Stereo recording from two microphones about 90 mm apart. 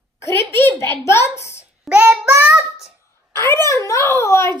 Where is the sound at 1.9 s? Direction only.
15° right (ahead or behind).